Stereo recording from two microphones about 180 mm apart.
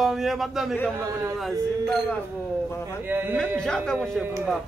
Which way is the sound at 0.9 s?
15° right (ahead or behind).